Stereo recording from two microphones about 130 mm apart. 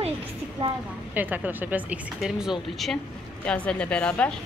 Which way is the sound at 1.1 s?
15° right (ahead or behind).